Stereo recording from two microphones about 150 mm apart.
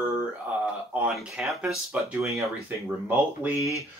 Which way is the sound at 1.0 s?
Centre (ahead or behind).